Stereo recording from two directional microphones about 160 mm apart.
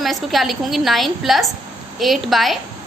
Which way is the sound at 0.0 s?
Centre (ahead or behind).